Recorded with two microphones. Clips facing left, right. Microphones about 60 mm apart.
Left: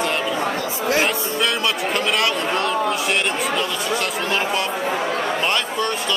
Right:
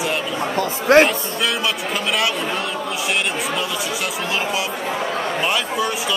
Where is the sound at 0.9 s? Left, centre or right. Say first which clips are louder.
Right 9 dB; right.